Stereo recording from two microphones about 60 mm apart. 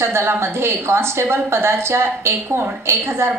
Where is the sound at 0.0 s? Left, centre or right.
Right.